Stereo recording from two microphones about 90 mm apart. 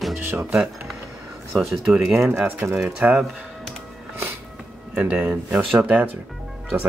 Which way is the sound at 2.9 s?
10° right (ahead or behind).